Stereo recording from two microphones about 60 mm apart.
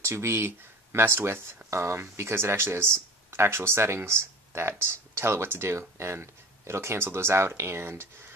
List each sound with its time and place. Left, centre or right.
0.0 s speech: right